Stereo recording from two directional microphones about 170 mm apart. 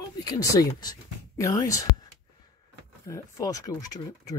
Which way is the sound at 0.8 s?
20° left (ahead or behind).